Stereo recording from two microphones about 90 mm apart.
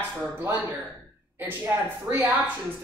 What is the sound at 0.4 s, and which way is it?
A woman's voice, 20° right (ahead or behind).